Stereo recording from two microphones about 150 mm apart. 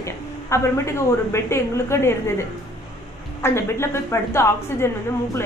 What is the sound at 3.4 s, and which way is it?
A woman's voice, 15° left (ahead or behind).